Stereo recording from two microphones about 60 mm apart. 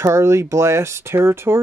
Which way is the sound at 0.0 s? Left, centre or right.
Right.